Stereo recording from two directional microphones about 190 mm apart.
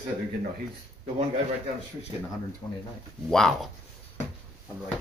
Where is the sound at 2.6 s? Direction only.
20° left (ahead or behind).